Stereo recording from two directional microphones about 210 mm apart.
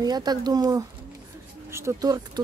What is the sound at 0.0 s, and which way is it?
Speech, 20° right (ahead or behind).